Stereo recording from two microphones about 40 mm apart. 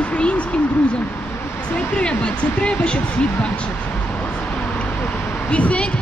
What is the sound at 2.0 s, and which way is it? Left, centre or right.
A woman's voice, left.